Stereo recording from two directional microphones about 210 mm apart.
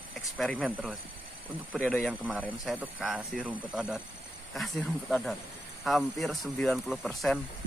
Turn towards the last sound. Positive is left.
turn(degrees=0)  # may be behind; listen again after turning